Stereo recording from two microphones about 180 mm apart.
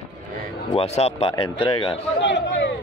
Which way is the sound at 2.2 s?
90° left.